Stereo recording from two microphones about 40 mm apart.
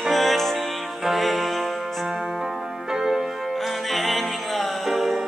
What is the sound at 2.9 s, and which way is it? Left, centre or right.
Music, centre.